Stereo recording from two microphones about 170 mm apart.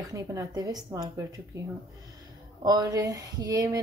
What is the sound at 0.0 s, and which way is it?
Speech, 20° right (ahead or behind).